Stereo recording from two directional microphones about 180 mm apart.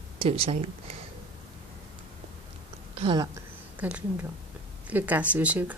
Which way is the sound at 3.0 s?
25° right (ahead or behind).